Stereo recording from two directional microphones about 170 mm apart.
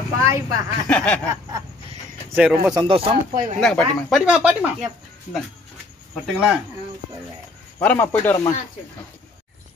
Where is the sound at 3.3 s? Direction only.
55° right (ahead or behind).